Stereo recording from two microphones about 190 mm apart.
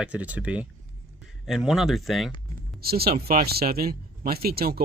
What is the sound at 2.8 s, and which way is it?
Speech, 55° right (ahead or behind).